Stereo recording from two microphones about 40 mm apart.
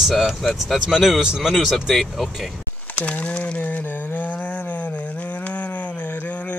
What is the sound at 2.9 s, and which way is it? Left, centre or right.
Speech, left.